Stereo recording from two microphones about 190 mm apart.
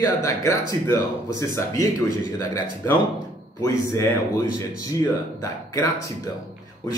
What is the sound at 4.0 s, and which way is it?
Speech, 15° left (ahead or behind).